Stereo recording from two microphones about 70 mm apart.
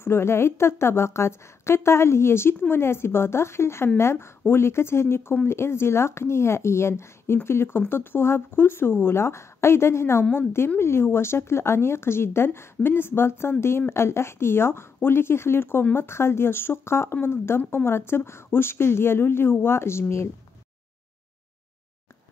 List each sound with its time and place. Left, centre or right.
0.0 s speech: left